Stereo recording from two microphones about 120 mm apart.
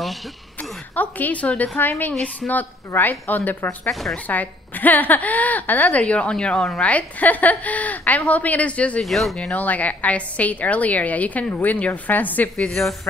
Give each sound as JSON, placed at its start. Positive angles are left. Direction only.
{"t": 0.9, "sound": "a woman's voice", "side_deg": 15}
{"t": 3.9, "sound": "speech", "side_deg": 0}
{"t": 4.3, "sound": "a woman's voice", "side_deg": 15}
{"t": 9.5, "sound": "a woman's voice", "side_deg": 15}